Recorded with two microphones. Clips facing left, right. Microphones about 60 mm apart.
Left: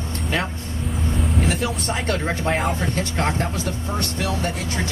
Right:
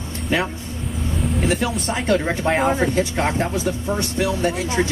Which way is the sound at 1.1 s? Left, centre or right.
Centre.